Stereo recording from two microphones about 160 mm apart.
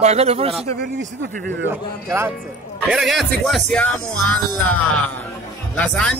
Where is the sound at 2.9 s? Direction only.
Centre (ahead or behind).